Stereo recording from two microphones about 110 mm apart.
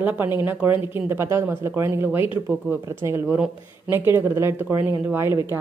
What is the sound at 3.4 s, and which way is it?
Speech, 10° right (ahead or behind).